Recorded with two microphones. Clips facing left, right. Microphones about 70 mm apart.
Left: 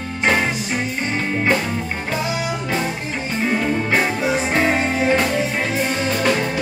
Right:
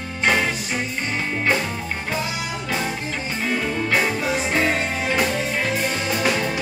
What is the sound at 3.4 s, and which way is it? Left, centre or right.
Music, centre.